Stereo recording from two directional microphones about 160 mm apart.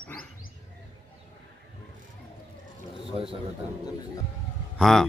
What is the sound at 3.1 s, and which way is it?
Speech, 35° right (ahead or behind).